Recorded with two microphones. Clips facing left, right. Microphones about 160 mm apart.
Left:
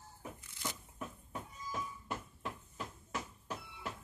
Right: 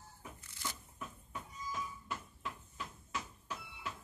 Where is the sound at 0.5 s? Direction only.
15° left (ahead or behind).